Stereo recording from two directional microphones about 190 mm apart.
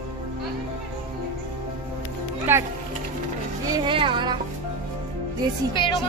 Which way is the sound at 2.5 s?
10° right (ahead or behind).